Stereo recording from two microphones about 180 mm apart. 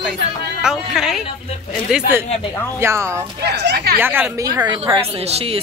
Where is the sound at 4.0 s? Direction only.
10° right (ahead or behind).